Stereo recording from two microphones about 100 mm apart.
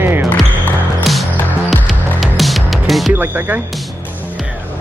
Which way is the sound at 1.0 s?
Centre (ahead or behind).